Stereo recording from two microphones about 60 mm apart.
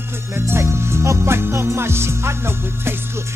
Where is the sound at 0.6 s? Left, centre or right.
Right.